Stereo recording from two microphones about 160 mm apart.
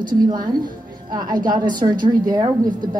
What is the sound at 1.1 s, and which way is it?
A woman's voice, 25° right (ahead or behind).